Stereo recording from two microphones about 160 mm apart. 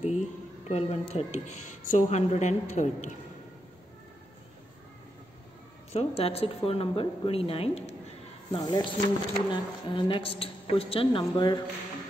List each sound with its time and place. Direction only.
0.0 s speech: 45° left (ahead or behind)
5.9 s speech: 40° left (ahead or behind)
8.5 s speech: 25° left (ahead or behind)
11.3 s speech: 25° left (ahead or behind)